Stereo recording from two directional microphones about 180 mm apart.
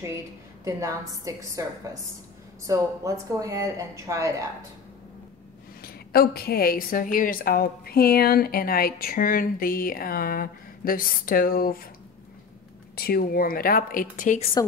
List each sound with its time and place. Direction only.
0.7 s speech: 15° right (ahead or behind)
5.8 s a woman's voice: 55° left (ahead or behind)
12.9 s speech: 55° left (ahead or behind)